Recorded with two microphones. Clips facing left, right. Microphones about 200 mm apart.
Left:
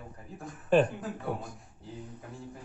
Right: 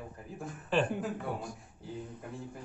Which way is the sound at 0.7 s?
50° left (ahead or behind).